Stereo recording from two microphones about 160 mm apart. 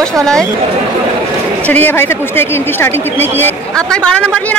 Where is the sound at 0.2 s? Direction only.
5° left (ahead or behind).